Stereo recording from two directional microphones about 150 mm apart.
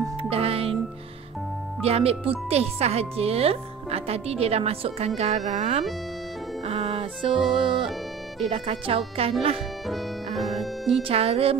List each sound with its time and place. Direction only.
0.2 s music: 40° right (ahead or behind)
1.8 s speech: 40° right (ahead or behind)
6.6 s music: 40° right (ahead or behind)
7.5 s speech: 35° right (ahead or behind)
9.8 s music: centre (ahead or behind)
11.0 s speech: 40° right (ahead or behind)